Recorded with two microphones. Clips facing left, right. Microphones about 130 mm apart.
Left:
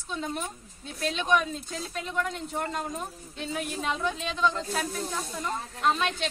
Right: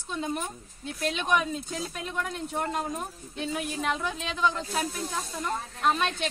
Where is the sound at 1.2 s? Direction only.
5° right (ahead or behind).